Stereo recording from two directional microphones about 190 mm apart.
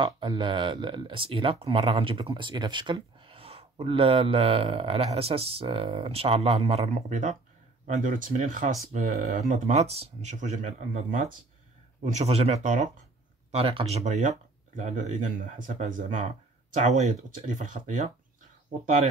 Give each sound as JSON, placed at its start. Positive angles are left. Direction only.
{"t": 0.0, "sound": "speech", "side_deg": -25}
{"t": 17.4, "sound": "speech", "side_deg": -40}